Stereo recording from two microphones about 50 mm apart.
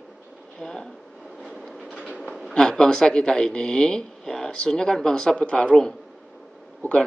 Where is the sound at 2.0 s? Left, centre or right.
Centre.